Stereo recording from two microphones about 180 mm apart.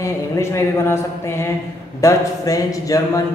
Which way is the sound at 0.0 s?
15° left (ahead or behind).